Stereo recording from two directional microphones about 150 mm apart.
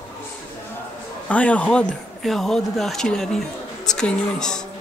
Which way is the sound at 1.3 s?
10° left (ahead or behind).